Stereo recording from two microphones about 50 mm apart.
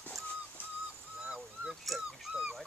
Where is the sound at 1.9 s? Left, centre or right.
Centre.